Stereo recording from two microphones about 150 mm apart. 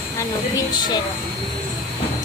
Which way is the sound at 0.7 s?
30° left (ahead or behind).